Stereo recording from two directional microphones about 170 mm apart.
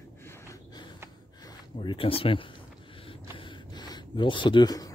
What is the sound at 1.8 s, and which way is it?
Speech, 30° left (ahead or behind).